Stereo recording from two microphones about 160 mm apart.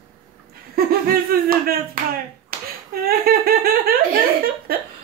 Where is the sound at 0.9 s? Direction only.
70° right (ahead or behind).